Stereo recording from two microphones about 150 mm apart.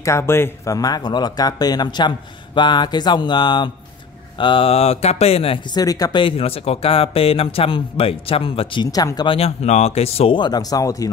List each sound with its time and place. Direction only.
0.0 s speech: 15° left (ahead or behind); by 5.8 s 40° left (ahead or behind)
5.8 s speech: 25° left (ahead or behind)
8.9 s speech: 25° left (ahead or behind)